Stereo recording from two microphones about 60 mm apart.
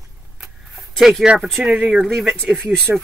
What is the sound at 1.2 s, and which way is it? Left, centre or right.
Speech, centre.